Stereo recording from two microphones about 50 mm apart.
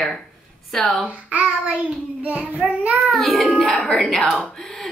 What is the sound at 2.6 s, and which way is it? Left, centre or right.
Speech, centre.